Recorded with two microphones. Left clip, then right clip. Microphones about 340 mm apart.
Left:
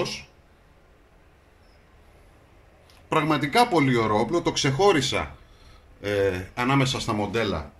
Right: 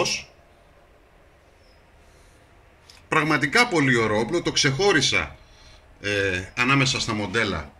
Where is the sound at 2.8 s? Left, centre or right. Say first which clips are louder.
Right 2 dB; centre.